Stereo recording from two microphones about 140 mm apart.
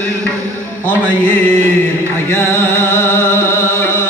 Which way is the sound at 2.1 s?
15° left (ahead or behind).